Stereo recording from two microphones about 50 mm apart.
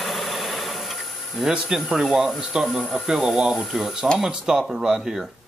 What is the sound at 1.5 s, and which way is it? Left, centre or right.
Speech, centre.